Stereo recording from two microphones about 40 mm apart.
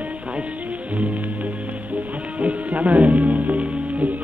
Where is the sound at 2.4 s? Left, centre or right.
Right.